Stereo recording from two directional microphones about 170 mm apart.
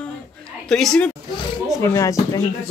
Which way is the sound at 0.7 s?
5° left (ahead or behind).